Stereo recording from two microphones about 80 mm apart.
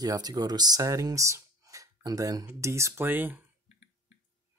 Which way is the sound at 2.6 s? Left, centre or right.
Right.